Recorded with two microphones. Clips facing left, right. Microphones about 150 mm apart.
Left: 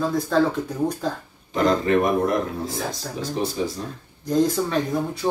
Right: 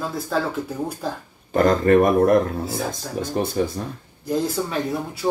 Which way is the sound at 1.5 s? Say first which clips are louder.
Right 4 dB; 50° right (ahead or behind).